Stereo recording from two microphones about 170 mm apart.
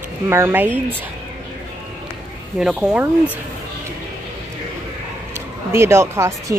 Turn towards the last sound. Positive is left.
turn(degrees=-15)  # may be behind; listen again after turning